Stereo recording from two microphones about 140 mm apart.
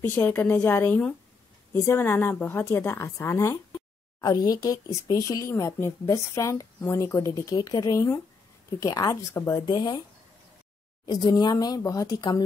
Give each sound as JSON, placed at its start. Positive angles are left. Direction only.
{"t": 0.0, "sound": "a woman's voice", "side_deg": 15}
{"t": 11.1, "sound": "speech", "side_deg": 30}